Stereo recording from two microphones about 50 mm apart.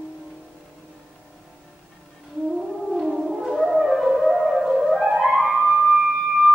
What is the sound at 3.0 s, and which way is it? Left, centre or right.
Music, centre.